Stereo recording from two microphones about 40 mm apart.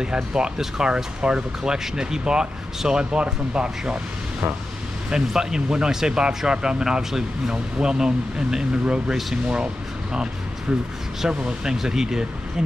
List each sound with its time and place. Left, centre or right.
0.0 s speech: centre
5.1 s speech: centre
6.8 s speech: centre
8.8 s speech: right
10.7 s speech: right
11.2 s speech: centre